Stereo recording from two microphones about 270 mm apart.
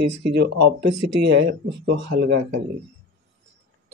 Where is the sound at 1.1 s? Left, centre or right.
Right.